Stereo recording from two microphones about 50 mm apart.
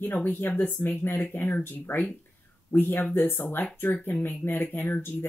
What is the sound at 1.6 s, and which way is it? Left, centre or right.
Speech, left.